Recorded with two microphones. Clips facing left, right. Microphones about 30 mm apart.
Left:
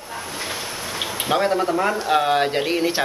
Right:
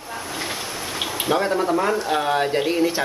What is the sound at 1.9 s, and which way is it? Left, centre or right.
Speech, centre.